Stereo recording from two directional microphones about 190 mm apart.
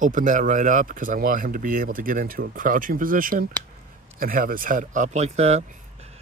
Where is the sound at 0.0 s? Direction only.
40° right (ahead or behind).